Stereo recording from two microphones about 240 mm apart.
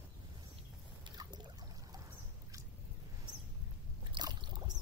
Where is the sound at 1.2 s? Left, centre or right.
Centre.